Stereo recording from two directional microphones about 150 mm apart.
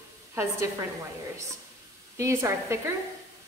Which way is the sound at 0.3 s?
20° right (ahead or behind).